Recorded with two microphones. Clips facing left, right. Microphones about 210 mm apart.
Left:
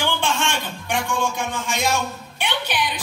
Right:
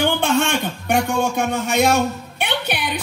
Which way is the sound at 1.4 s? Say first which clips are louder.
Right 7 dB; 65° right (ahead or behind).